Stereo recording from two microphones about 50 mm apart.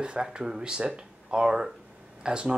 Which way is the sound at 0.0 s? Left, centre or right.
Centre.